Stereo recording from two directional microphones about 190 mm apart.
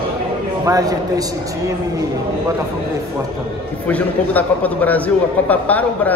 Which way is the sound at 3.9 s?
10° left (ahead or behind).